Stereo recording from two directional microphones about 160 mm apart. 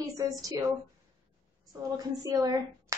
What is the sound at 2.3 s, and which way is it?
Speech, 25° right (ahead or behind).